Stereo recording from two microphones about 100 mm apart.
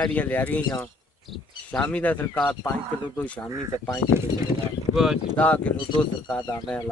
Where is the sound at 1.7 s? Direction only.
15° left (ahead or behind).